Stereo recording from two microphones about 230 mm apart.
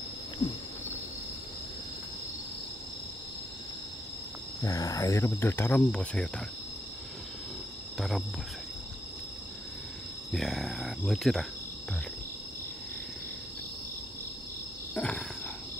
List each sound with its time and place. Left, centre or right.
0.4 s wild animals: left
4.6 s speech: centre
10.3 s speech: centre
15.0 s a sound: centre